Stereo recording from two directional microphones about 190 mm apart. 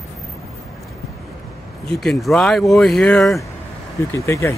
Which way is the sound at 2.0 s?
Centre (ahead or behind).